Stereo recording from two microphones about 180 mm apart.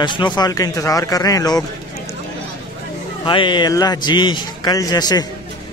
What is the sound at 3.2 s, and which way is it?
Speech, 25° left (ahead or behind).